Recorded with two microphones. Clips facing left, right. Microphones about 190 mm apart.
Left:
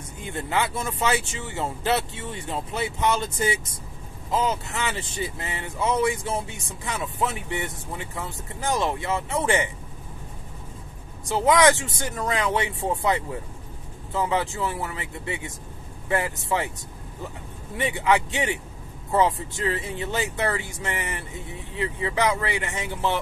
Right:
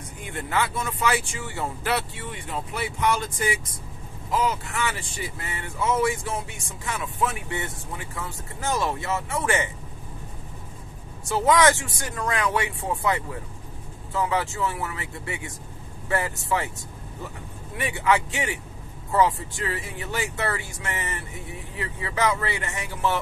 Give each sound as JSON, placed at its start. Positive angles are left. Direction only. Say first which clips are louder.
{"t": 0.2, "sound": "speech", "louder": "left 1 dB", "side_deg": 20}
{"t": 11.2, "sound": "speech", "louder": "left 1 dB", "side_deg": 15}
{"t": 17.7, "sound": "speech", "louder": "left 1 dB", "side_deg": 20}